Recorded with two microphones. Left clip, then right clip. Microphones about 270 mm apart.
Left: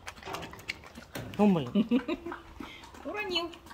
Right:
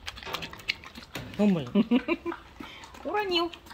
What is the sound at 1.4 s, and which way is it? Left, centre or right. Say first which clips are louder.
Speech: left 1 dB; centre.